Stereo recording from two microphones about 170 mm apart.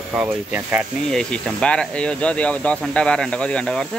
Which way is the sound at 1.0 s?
Centre (ahead or behind).